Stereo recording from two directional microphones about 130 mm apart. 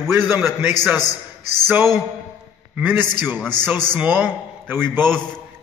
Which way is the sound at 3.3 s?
5° left (ahead or behind).